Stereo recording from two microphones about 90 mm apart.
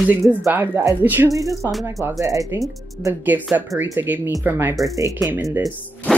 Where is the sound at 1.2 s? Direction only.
35° right (ahead or behind).